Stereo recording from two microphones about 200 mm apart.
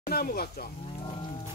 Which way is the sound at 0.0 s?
50° left (ahead or behind).